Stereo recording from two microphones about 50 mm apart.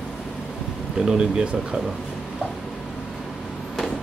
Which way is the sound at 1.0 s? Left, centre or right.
Centre.